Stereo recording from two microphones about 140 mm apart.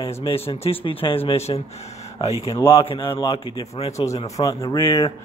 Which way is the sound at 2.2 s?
25° left (ahead or behind).